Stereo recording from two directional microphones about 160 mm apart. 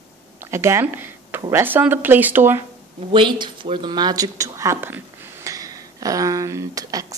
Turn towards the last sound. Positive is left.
turn(degrees=-20)  # may be behind; listen again after turning